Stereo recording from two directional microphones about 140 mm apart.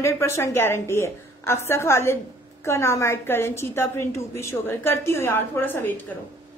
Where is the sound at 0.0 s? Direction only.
20° left (ahead or behind).